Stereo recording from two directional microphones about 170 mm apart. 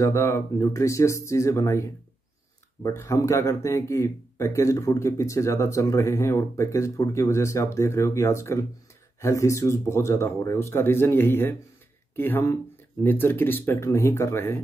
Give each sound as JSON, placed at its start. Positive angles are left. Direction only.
{"t": 0.0, "sound": "speech", "side_deg": 15}